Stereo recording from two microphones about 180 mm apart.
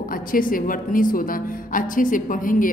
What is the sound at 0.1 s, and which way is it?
A woman's voice, 50° left (ahead or behind).